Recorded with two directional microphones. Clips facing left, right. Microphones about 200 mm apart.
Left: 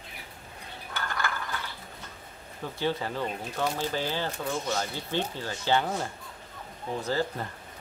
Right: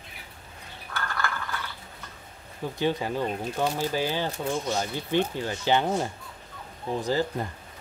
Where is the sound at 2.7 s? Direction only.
15° right (ahead or behind).